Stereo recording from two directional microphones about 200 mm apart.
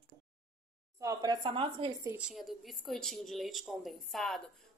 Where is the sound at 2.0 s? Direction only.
15° right (ahead or behind).